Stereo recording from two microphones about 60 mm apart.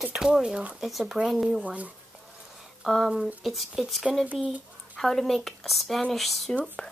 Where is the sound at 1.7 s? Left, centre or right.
Right.